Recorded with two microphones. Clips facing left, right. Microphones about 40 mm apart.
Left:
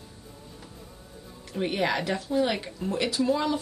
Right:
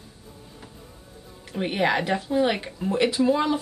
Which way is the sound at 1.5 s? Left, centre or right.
Centre.